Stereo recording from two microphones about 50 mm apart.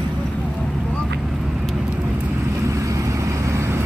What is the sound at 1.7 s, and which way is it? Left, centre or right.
Vehicle, right.